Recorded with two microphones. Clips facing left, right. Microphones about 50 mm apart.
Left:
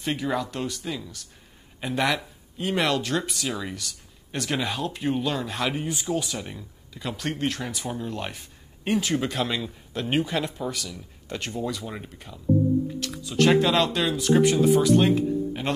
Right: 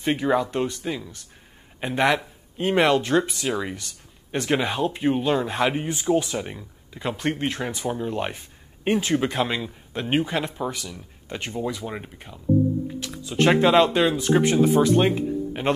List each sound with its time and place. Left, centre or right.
0.0 s speech: right